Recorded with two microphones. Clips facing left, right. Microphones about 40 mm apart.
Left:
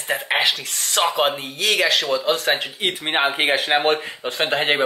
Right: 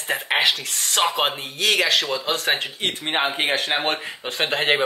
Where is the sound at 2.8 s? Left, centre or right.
Centre.